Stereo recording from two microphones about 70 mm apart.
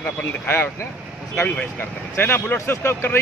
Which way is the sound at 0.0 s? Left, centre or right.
Left.